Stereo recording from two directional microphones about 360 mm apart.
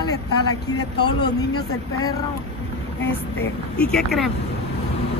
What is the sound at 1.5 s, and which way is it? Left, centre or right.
Speech, left.